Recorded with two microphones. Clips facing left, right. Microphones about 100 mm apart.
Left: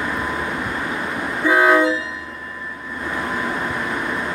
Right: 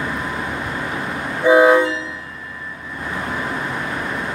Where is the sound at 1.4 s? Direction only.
15° right (ahead or behind).